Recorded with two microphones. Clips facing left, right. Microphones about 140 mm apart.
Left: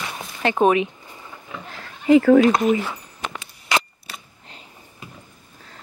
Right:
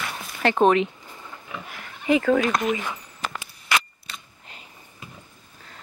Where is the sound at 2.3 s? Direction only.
25° left (ahead or behind).